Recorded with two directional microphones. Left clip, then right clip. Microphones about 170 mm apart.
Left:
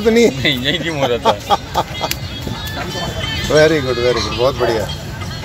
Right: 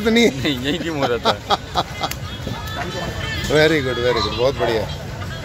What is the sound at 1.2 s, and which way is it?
Speech, 25° right (ahead or behind).